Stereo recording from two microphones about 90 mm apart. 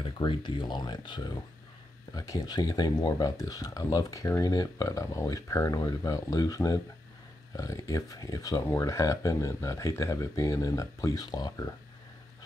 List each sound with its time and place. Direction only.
0.0 s speech: 60° left (ahead or behind)